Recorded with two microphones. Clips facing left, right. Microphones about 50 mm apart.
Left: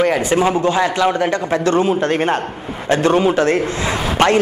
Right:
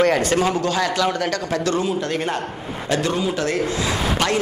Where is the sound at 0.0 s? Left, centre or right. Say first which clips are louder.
Left 2 dB; centre.